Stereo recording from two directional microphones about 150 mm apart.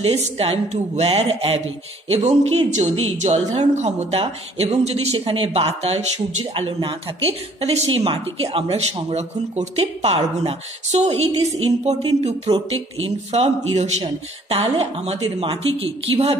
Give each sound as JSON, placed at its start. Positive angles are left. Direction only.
{"t": 0.0, "sound": "a woman's voice", "side_deg": -40}
{"t": 6.5, "sound": "a woman's voice", "side_deg": -35}